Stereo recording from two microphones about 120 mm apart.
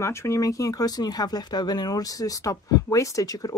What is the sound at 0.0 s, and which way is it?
Speech, 20° left (ahead or behind).